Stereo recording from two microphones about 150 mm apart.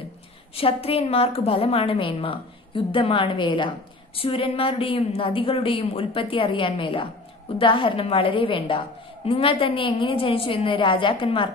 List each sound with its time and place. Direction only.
0.6 s a woman's voice: 40° left (ahead or behind)